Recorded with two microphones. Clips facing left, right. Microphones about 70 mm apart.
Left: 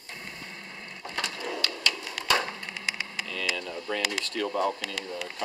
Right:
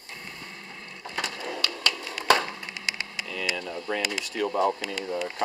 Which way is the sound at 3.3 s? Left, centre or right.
Centre.